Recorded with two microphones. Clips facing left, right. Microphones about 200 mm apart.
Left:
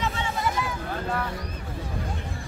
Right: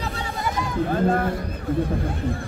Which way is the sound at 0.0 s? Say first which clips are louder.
Left 1 dB; 35° right (ahead or behind).